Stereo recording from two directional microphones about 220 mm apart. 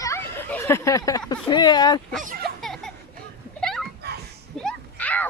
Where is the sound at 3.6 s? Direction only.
Centre (ahead or behind).